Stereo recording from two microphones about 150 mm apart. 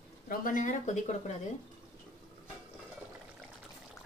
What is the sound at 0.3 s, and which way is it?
Speech, 65° left (ahead or behind).